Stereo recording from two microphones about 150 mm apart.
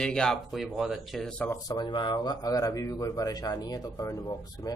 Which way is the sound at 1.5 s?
25° left (ahead or behind).